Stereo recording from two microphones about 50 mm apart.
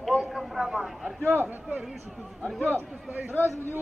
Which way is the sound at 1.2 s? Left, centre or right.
Right.